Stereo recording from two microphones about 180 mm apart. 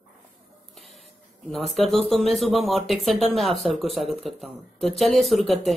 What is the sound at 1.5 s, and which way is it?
Speech, centre (ahead or behind).